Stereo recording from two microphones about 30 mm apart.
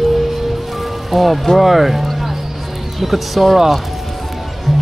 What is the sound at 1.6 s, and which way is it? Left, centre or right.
Speech, centre.